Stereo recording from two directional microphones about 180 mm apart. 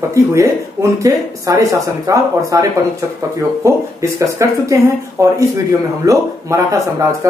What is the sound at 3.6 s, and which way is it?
Speech, 15° right (ahead or behind).